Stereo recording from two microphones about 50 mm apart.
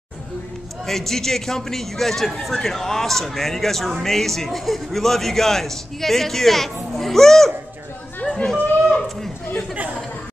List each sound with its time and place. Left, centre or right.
0.8 s a man's voice: centre
8.2 s chatter: left